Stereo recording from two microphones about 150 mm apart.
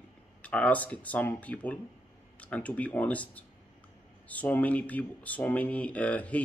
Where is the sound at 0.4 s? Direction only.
10° left (ahead or behind).